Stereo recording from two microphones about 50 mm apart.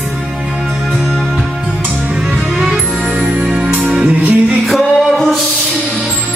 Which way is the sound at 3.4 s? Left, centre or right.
Centre.